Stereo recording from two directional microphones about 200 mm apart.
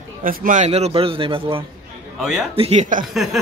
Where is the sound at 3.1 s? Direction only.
Centre (ahead or behind).